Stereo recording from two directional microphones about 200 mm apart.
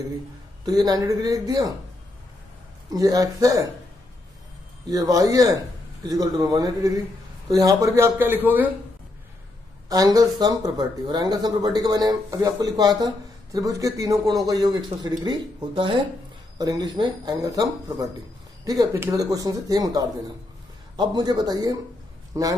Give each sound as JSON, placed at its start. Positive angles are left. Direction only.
{"t": 0.7, "sound": "speech", "side_deg": -20}
{"t": 2.9, "sound": "speech", "side_deg": -20}
{"t": 4.8, "sound": "speech", "side_deg": -20}
{"t": 9.8, "sound": "a man's voice", "side_deg": -20}